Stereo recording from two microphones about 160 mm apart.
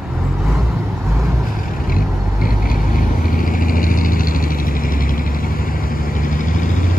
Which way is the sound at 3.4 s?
60° left (ahead or behind).